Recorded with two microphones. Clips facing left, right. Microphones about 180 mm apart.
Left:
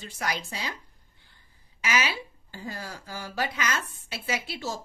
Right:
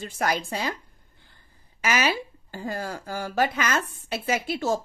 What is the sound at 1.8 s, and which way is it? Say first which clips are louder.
Speech: right 4 dB; 50° right (ahead or behind).